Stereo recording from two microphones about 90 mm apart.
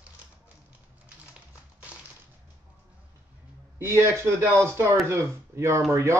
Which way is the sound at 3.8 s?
30° right (ahead or behind).